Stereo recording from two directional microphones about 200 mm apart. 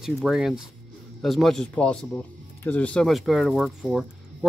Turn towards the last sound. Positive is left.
turn(degrees=0)  # may be behind; listen again after turning